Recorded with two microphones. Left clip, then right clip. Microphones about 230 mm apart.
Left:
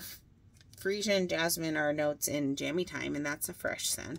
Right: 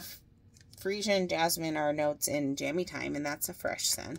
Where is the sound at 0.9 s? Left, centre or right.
Right.